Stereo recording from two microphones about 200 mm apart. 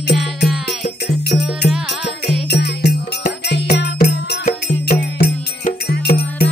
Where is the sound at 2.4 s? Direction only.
55° left (ahead or behind).